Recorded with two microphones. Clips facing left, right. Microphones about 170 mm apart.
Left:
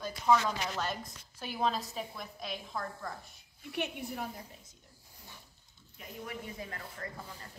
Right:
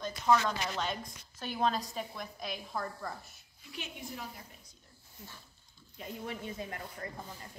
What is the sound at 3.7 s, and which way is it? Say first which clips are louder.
Speech: left 6 dB; 65° left (ahead or behind).